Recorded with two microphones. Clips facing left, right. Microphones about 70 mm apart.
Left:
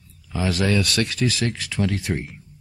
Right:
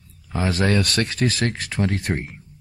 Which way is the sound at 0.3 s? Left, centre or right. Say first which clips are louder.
Right 1 dB; right.